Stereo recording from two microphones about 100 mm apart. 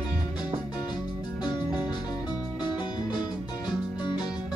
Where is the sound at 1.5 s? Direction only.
45° left (ahead or behind).